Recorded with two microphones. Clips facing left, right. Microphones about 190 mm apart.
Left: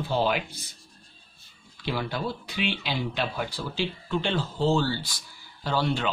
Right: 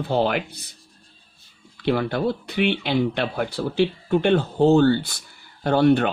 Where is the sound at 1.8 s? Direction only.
55° right (ahead or behind).